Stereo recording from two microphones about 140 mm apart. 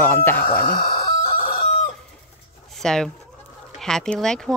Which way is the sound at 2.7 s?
5° left (ahead or behind).